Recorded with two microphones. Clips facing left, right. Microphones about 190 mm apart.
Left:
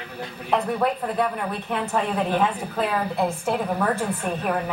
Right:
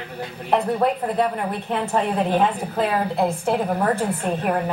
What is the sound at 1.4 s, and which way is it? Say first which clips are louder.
A woman's voice: right 2 dB; 20° right (ahead or behind).